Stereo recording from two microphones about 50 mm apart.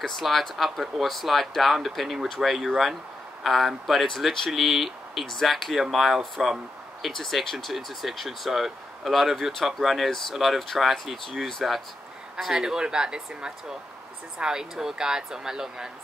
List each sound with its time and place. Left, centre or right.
0.0 s speech: centre
7.1 s speech: centre
12.4 s speech: centre